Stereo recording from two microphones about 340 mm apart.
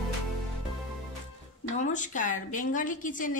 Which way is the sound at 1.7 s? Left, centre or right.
Left.